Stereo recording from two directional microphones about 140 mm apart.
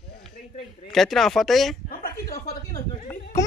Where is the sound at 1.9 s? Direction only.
90° left.